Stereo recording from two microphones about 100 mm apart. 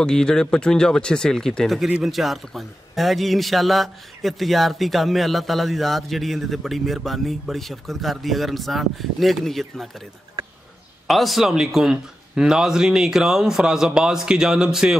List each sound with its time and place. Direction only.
0.0 s speech: 5° left (ahead or behind)
10.4 s a sound: 45° right (ahead or behind)
11.1 s speech: centre (ahead or behind)